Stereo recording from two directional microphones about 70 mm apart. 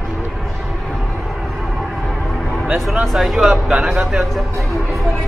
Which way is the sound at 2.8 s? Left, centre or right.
Centre.